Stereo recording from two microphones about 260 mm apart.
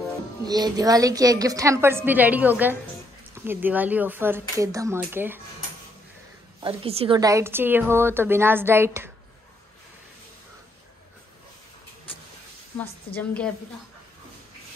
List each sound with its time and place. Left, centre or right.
0.5 s a woman's voice: centre
6.6 s a woman's voice: right
12.7 s a woman's voice: centre